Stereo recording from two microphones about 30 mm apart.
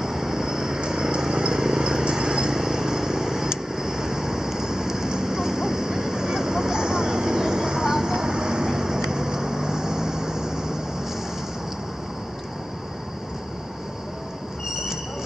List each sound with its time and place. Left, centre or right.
0.0 s vehicle: centre
1.3 s a sound: right
2.5 s vehicle: centre